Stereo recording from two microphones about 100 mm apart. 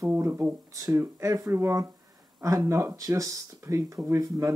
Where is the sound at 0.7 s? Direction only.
30° right (ahead or behind).